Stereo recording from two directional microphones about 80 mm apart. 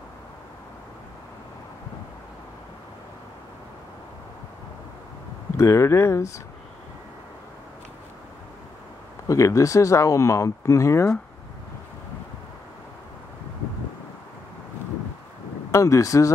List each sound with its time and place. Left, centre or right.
5.6 s speech: left
9.3 s speech: left
15.7 s speech: left